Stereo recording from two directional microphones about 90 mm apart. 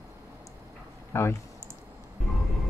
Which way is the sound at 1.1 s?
30° left (ahead or behind).